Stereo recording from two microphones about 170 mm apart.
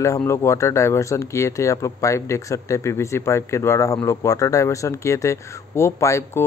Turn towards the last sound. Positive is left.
turn(degrees=15)  # may be behind; listen again after turning